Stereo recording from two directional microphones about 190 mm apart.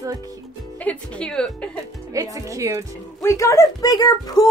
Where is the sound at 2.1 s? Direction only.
15° right (ahead or behind).